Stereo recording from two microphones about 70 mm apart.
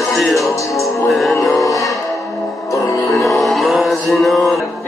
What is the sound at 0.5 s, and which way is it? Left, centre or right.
Music, left.